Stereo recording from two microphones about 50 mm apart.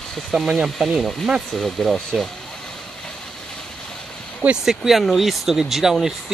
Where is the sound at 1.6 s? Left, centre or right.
Centre.